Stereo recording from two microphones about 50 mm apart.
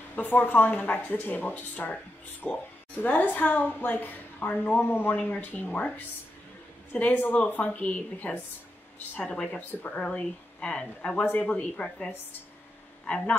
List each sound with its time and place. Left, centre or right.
0.1 s a woman's voice: left
5.1 s a woman's voice: left